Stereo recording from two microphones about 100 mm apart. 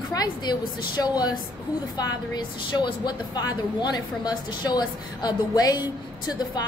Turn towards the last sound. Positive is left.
turn(degrees=40)  # may be behind; listen again after turning